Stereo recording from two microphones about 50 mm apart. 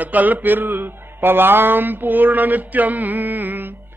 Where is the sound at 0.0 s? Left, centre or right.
Right.